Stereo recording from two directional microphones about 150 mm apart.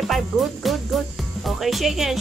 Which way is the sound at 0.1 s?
Centre (ahead or behind).